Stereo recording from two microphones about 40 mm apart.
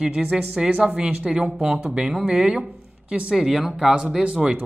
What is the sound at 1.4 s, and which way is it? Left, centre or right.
Speech, centre.